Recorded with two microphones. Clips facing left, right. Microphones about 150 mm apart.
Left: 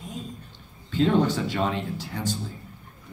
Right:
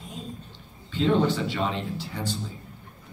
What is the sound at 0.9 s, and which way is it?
Speech, 45° left (ahead or behind).